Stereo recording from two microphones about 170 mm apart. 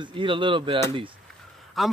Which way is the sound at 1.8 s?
Centre (ahead or behind).